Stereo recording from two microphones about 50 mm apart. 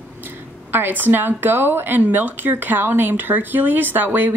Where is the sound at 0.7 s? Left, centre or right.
Right.